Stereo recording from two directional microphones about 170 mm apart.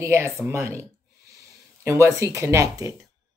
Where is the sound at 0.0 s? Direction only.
15° right (ahead or behind).